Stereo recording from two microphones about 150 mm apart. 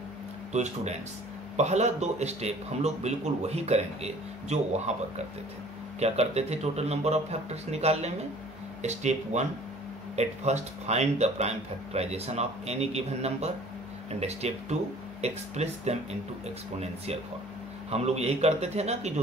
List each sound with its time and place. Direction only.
0.5 s speech: 50° right (ahead or behind)